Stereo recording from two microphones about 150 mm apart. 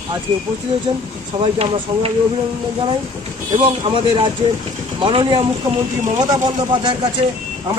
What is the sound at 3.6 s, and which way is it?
Speech, 35° right (ahead or behind).